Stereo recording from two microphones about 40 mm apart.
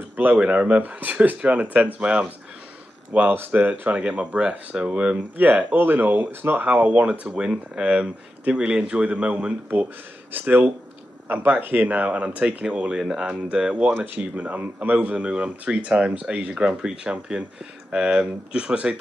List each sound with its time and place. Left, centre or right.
0.1 s speech: right
4.4 s speech: right
5.4 s speech: right
5.8 s speech: right
7.7 s speech: right
9.0 s speech: right
10.3 s speech: right
13.0 s speech: centre
13.3 s speech: right
13.9 s speech: right
16.4 s speech: right